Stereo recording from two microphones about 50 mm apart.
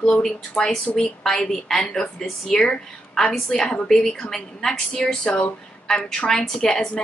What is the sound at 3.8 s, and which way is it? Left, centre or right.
Speech, centre.